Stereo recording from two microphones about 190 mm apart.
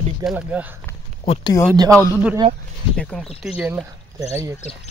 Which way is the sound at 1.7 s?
20° right (ahead or behind).